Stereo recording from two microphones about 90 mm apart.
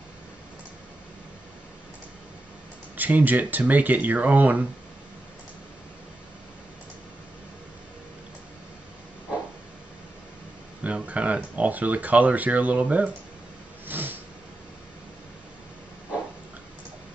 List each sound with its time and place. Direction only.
3.0 s speech: 20° right (ahead or behind)
10.8 s speech: 15° right (ahead or behind)
13.8 s a sound: 20° right (ahead or behind)